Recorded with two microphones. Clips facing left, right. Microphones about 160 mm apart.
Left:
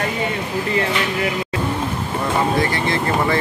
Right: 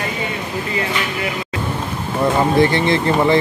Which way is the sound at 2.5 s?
25° right (ahead or behind).